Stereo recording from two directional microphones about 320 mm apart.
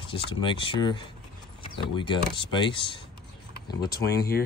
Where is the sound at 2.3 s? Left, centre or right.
Centre.